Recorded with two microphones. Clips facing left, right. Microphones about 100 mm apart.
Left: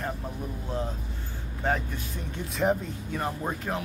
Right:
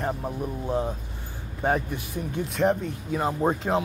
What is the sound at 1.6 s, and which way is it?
Speech, 15° right (ahead or behind).